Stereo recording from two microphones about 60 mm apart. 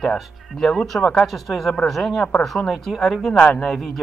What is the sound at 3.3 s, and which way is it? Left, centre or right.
Speech, left.